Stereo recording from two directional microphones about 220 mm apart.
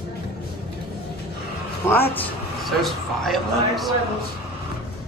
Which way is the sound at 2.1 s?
Centre (ahead or behind).